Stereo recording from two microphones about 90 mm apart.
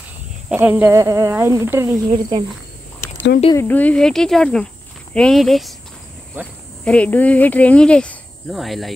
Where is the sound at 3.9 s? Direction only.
5° left (ahead or behind).